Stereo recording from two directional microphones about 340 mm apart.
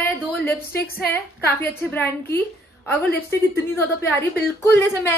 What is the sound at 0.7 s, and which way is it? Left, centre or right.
Speech, left.